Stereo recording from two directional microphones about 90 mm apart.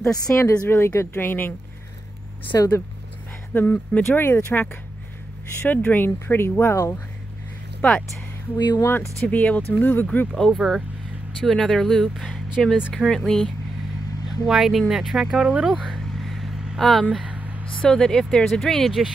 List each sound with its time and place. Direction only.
0.2 s a woman's voice: 40° left (ahead or behind)
2.5 s speech: 40° left (ahead or behind)
3.5 s a woman's voice: 20° left (ahead or behind)
7.8 s speech: 15° left (ahead or behind)
8.5 s speech: 55° left (ahead or behind)
9.3 s a woman's voice: 15° left (ahead or behind)
10.3 s speech: 5° left (ahead or behind)
14.4 s speech: 5° right (ahead or behind)
15.8 s vehicle: centre (ahead or behind)
17.1 s speech: 10° right (ahead or behind)
17.8 s speech: 10° left (ahead or behind)